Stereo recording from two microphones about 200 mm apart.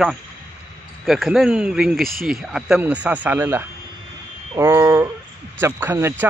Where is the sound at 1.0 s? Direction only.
Centre (ahead or behind).